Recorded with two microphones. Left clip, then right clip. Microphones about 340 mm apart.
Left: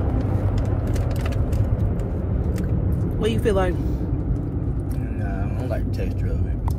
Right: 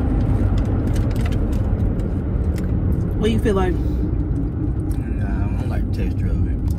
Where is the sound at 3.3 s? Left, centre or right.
Centre.